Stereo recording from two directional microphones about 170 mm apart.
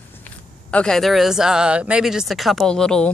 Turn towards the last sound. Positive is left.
turn(degrees=5)  # may be behind; listen again after turning